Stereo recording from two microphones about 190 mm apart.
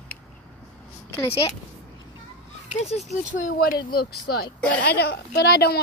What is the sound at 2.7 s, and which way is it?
Speech, 35° left (ahead or behind).